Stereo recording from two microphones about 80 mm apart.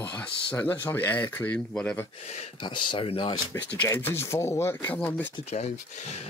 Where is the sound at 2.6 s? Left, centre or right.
Left.